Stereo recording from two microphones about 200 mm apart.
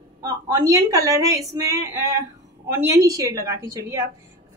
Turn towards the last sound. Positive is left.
turn(degrees=-15)  # may be behind; listen again after turning